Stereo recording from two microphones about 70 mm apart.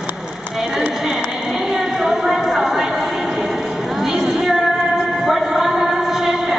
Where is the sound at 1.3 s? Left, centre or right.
Centre.